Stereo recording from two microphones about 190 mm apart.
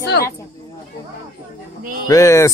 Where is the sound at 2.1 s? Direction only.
15° left (ahead or behind).